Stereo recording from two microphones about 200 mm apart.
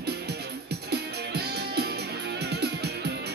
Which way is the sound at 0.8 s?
55° right (ahead or behind).